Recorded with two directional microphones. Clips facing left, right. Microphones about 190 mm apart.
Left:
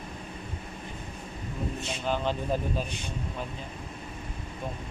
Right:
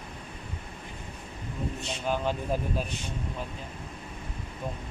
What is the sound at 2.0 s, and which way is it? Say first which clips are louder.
Speech: even; 5° right (ahead or behind).